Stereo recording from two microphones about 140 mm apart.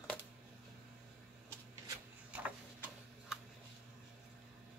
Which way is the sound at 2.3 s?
10° right (ahead or behind).